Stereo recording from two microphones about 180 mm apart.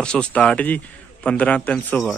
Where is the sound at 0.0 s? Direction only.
5° left (ahead or behind).